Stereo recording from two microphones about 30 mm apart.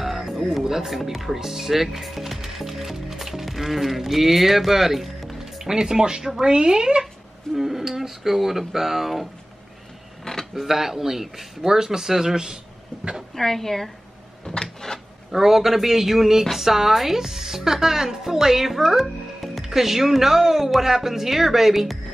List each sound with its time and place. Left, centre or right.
0.0 s music: centre
0.4 s music: centre
0.8 s speech: centre; by 7.1 s right
7.5 s speech: centre
10.3 s creak: left
10.6 s a woman's voice: centre
13.3 s speech: centre
14.4 s a sound: left
15.3 s a woman's voice: centre
19.7 s a woman's voice: centre